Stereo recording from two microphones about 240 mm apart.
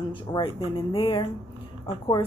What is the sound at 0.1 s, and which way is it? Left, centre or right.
Speech, left.